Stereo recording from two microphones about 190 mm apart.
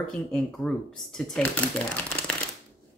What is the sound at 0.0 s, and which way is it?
Speech, 5° left (ahead or behind).